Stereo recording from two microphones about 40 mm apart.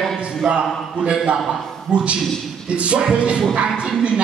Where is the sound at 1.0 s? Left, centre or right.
Right.